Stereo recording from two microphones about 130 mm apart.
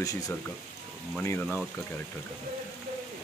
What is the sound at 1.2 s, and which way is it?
Speech, 15° left (ahead or behind).